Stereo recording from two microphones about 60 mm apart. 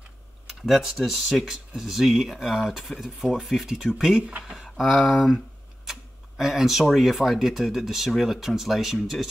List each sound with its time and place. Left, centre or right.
0.5 s speech: centre
4.6 s speech: centre
5.9 s tick-tock: centre
6.9 s speech: centre